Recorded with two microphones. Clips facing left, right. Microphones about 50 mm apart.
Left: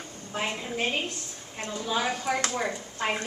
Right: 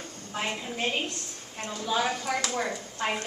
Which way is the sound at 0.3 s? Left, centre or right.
Centre.